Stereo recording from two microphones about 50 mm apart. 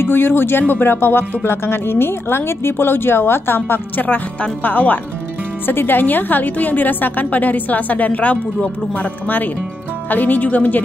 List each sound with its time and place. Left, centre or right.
0.0 s speech: left
4.6 s a woman's voice: left
10.0 s a woman's voice: left